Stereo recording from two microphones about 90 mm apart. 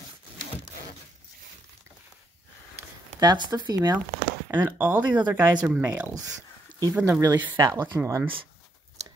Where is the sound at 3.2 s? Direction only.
55° right (ahead or behind).